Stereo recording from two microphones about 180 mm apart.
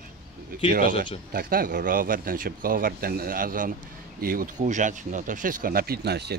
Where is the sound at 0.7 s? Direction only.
50° right (ahead or behind).